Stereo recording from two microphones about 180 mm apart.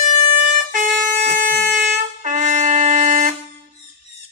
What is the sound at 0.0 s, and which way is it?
Music, 45° right (ahead or behind).